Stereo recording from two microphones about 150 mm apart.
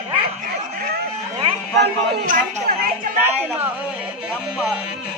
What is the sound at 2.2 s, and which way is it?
Speech, 65° right (ahead or behind).